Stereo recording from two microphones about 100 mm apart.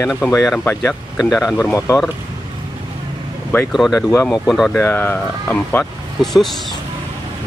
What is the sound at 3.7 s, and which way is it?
Speech, centre (ahead or behind).